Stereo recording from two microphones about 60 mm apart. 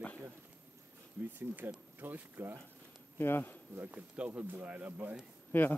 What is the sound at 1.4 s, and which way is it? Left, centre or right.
Speech, right.